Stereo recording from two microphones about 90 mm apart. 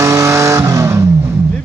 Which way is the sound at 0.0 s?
35° right (ahead or behind).